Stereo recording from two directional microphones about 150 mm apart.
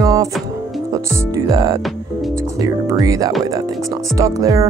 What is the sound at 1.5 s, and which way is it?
Speech, 25° right (ahead or behind).